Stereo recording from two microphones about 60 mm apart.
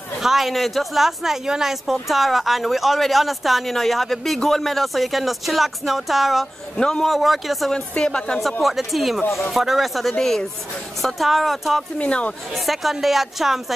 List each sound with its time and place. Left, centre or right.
0.2 s speech: centre
6.8 s speech: centre
7.1 s speech: centre
8.0 s speech: centre
8.4 s speech: centre
12.0 s speech: centre
12.5 s speech: centre